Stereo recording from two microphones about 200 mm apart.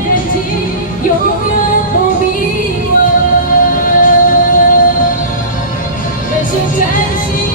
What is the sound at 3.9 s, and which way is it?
Music, 40° left (ahead or behind).